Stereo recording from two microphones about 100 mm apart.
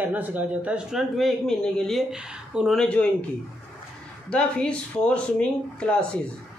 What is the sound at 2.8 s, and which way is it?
Speech, 10° left (ahead or behind).